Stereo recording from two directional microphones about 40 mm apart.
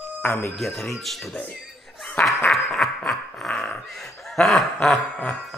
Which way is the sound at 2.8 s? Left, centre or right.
Centre.